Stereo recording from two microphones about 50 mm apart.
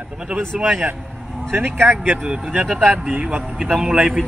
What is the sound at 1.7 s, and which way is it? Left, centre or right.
Speech, centre.